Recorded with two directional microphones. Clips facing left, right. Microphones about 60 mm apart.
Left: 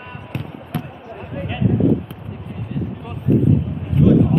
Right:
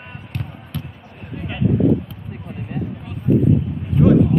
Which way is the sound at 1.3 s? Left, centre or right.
Centre.